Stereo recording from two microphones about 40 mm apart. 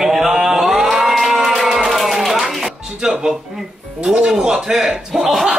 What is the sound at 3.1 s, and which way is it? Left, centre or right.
Speech, centre.